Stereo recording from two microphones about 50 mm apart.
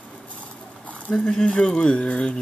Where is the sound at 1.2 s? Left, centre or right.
Centre.